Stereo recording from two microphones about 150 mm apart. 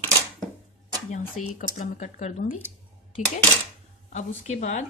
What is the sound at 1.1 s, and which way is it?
Speech, 55° left (ahead or behind).